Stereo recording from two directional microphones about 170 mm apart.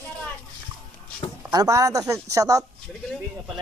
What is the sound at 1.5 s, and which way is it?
Speech, 20° right (ahead or behind).